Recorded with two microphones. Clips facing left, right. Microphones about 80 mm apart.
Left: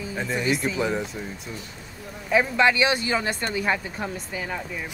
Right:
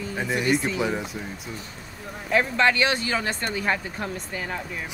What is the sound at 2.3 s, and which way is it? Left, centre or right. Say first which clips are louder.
Speech: left 1 dB; centre.